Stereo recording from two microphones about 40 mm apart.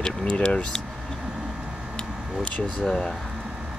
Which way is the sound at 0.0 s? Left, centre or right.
Left.